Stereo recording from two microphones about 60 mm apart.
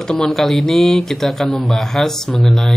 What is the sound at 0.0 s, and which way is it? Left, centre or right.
Speech, centre.